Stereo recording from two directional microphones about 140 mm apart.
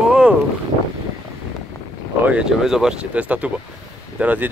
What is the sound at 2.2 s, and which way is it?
Speech, 5° right (ahead or behind).